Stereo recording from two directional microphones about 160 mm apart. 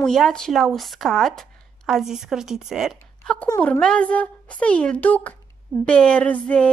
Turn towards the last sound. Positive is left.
turn(degrees=10)  # may be behind; listen again after turning